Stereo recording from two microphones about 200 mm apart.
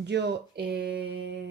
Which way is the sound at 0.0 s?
60° right (ahead or behind).